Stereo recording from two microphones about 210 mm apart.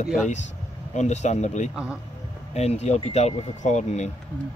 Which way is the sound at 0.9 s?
35° left (ahead or behind).